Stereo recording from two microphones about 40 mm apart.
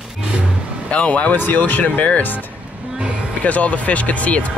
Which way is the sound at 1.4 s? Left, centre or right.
Left.